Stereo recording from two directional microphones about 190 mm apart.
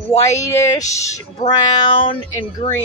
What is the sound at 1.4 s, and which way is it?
Speech, 25° left (ahead or behind).